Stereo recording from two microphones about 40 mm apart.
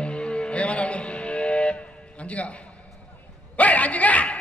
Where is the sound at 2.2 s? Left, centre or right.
Left.